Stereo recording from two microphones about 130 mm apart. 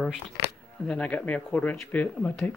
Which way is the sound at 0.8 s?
10° left (ahead or behind).